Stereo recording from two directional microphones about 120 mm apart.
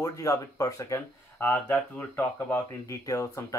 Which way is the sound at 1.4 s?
15° left (ahead or behind).